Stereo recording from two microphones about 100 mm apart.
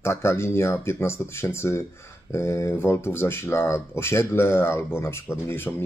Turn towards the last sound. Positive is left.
turn(degrees=25)  # may be behind; listen again after turning